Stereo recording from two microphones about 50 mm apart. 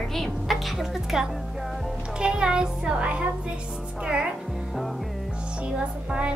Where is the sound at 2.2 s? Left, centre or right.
Centre.